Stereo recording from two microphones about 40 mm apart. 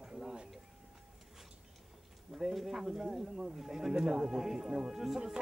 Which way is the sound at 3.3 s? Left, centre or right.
Centre.